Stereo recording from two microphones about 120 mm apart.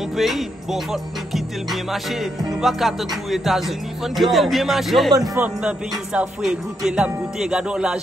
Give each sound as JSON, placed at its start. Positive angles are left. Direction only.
{"t": 1.3, "sound": "music", "side_deg": 0}
{"t": 5.1, "sound": "a man's voice", "side_deg": -30}
{"t": 5.4, "sound": "speech", "side_deg": -10}